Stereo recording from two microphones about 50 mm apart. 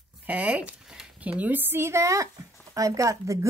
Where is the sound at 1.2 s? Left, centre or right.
Right.